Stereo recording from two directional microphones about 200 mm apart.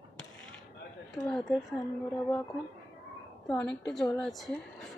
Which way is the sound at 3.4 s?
5° left (ahead or behind).